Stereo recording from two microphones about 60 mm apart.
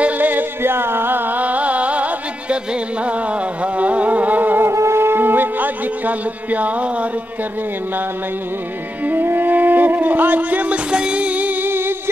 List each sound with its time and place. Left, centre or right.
0.0 s music: right
3.6 s music: right
4.6 s music: right
9.0 s music: right